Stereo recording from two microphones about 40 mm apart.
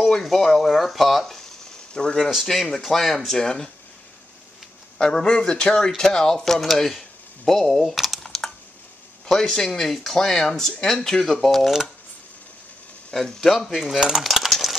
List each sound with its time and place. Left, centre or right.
0.2 s speech: centre
2.0 s speech: left
2.4 s speech: centre
4.9 s speech: centre
6.7 s a sound: centre
9.3 s speech: centre
13.1 s speech: centre
13.7 s coin: centre
14.2 s a sound: centre